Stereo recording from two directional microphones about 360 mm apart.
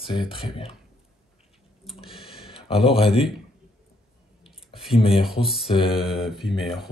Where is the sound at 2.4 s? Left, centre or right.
Centre.